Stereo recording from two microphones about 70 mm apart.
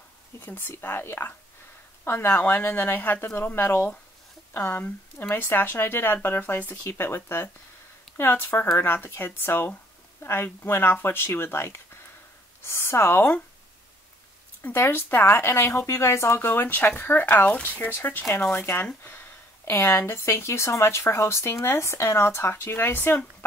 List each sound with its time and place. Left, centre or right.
0.4 s speech: left
14.6 s speech: left